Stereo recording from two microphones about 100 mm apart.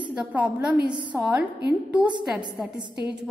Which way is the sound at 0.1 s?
15° right (ahead or behind).